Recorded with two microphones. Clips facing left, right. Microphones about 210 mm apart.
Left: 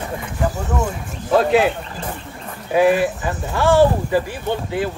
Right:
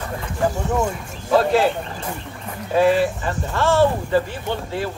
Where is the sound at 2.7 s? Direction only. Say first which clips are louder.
Left 1 dB; 15° left (ahead or behind).